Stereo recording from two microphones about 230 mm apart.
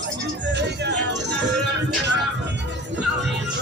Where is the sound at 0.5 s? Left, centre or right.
Right.